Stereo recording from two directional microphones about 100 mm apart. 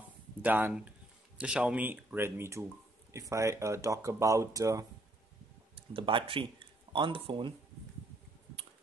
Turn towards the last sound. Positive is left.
turn(degrees=-55)  # may be behind; listen again after turning